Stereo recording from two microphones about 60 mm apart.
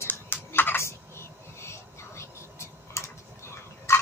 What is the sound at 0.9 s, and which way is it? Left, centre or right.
Whispering, left.